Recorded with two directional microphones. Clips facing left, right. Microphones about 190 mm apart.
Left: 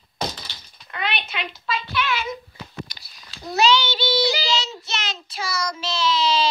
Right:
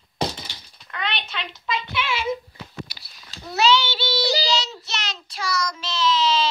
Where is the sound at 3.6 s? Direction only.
5° right (ahead or behind); by 6.5 s 10° left (ahead or behind).